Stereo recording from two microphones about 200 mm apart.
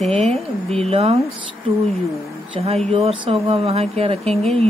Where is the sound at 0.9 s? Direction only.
30° right (ahead or behind).